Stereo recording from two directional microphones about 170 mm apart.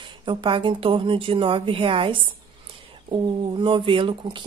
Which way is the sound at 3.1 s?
30° right (ahead or behind).